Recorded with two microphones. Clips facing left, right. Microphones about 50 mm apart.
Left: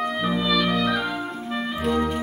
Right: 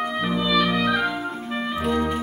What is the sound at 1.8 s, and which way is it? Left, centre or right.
Clarinet, centre.